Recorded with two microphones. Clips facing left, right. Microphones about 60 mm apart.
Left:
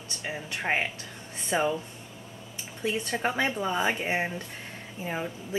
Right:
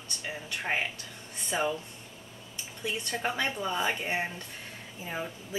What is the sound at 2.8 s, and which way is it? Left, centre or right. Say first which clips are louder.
Speech: left 4 dB; centre.